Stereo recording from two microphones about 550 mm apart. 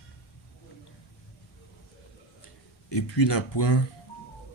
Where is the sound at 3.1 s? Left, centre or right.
Left.